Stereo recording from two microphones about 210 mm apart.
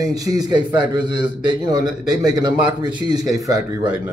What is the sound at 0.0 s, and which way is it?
A man's voice, 15° right (ahead or behind).